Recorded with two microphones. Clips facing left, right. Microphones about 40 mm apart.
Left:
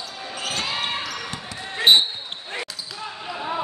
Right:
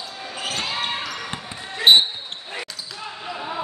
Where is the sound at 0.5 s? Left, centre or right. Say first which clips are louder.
Even; centre.